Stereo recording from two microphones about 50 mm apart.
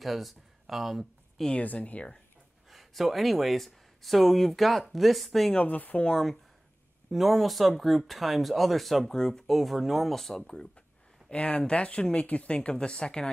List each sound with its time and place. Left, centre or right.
0.0 s speech: centre
1.5 s speech: left
2.7 s speech: centre
5.5 s speech: left
7.1 s speech: centre
9.1 s speech: centre
9.5 s speech: centre
11.2 s speech: left